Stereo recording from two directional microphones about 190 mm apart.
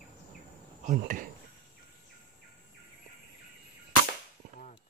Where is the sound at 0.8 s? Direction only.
45° right (ahead or behind).